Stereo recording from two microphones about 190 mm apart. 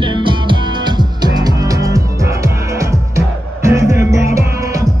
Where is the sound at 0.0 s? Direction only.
25° right (ahead or behind).